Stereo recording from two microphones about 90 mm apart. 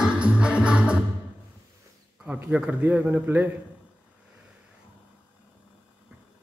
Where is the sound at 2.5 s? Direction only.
15° right (ahead or behind).